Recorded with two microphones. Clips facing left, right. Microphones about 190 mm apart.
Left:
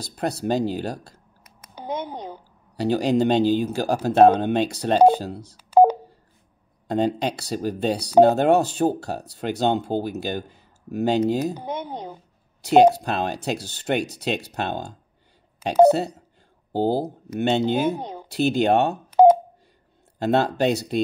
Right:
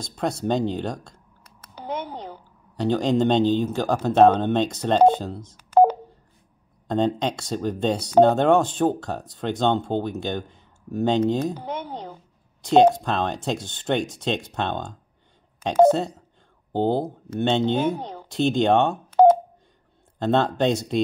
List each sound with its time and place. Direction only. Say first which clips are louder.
0.0 s speech: even; 5° left (ahead or behind)
1.6 s a sound: left 1 dB; 15° left (ahead or behind)
2.8 s speech: left 1 dB; 5° left (ahead or behind)
5.3 s speech: even; 25° right (ahead or behind)
5.6 s telephone dialing: left 1 dB; 10° left (ahead or behind)
7.2 s speech: even; 5° left (ahead or behind)
20.2 s speech: even; 5° left (ahead or behind)